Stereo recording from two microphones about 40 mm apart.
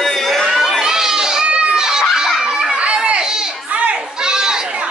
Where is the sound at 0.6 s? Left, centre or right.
Centre.